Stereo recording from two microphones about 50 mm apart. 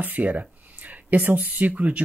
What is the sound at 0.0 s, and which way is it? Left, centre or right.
Speech, right.